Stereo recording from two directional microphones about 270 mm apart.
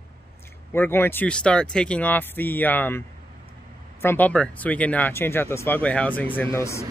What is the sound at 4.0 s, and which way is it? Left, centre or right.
Speech, centre.